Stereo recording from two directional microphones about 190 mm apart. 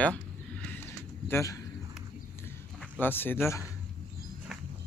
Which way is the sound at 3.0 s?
10° left (ahead or behind).